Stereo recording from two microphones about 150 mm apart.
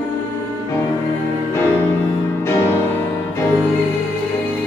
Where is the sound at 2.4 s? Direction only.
15° left (ahead or behind).